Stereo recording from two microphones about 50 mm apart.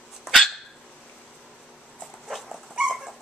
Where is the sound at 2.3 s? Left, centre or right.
Centre.